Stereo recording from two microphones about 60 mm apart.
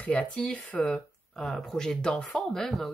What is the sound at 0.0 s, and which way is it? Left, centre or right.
Speech, left.